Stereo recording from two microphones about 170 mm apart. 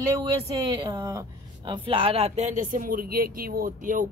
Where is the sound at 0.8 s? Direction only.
20° right (ahead or behind).